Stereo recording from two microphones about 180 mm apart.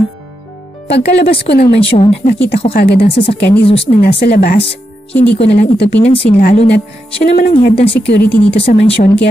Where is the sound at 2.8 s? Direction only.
65° left (ahead or behind).